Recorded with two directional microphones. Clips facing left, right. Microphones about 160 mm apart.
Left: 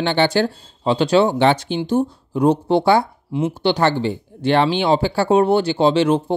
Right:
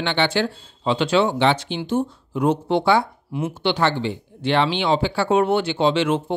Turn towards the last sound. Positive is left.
turn(degrees=35)  # may be behind; listen again after turning